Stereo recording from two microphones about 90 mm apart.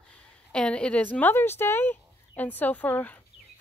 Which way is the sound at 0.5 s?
10° left (ahead or behind).